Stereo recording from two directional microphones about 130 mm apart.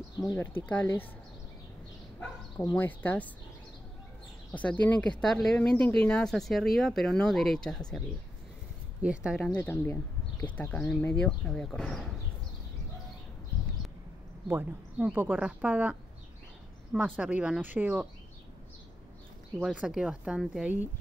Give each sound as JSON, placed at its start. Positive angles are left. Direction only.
{"t": 0.2, "sound": "speech", "side_deg": 30}
{"t": 0.7, "sound": "speech", "side_deg": 15}
{"t": 2.8, "sound": "speech", "side_deg": 15}
{"t": 4.5, "sound": "speech", "side_deg": 10}
{"t": 9.0, "sound": "speech", "side_deg": -10}
{"t": 9.6, "sound": "speech", "side_deg": 15}
{"t": 14.5, "sound": "speech", "side_deg": -15}
{"t": 19.6, "sound": "speech", "side_deg": -5}